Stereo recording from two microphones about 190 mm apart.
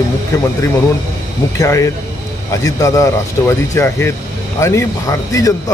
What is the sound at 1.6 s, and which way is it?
A man's voice, 15° left (ahead or behind).